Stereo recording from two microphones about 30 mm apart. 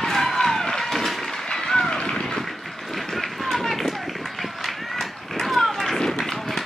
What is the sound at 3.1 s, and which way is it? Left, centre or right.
Run, centre.